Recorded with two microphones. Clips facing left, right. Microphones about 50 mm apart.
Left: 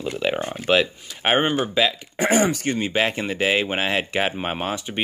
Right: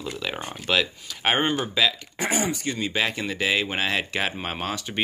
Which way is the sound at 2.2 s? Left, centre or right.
Left.